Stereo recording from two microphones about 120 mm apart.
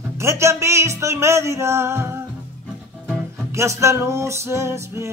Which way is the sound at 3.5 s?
25° right (ahead or behind).